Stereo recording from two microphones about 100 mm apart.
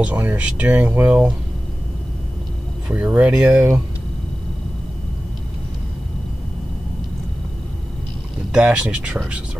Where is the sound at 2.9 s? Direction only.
10° right (ahead or behind).